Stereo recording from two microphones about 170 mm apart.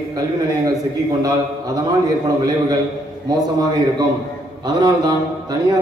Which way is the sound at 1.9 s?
20° right (ahead or behind).